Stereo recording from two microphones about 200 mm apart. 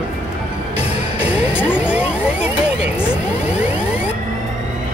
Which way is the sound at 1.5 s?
5° right (ahead or behind).